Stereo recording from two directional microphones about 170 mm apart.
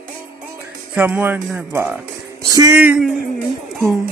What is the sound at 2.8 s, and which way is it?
Speech, 5° right (ahead or behind).